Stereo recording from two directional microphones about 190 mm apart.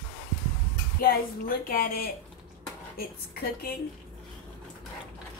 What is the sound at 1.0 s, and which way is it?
A woman's voice, 50° left (ahead or behind).